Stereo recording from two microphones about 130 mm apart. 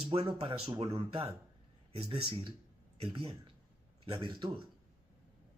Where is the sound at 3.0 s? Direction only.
40° right (ahead or behind).